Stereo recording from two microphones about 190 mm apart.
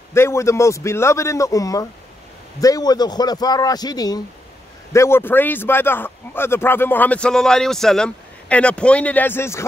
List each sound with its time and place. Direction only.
0.1 s a man's voice: 15° left (ahead or behind)